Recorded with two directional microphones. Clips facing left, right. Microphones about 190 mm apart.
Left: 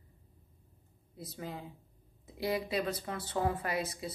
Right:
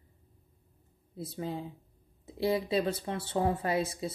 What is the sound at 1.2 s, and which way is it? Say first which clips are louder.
Speech: right 6 dB; 30° right (ahead or behind).